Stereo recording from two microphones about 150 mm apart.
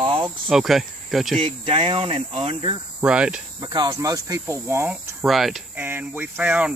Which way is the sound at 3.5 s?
30° right (ahead or behind).